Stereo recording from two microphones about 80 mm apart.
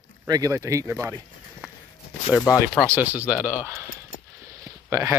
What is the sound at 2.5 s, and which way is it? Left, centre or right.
Speech, left.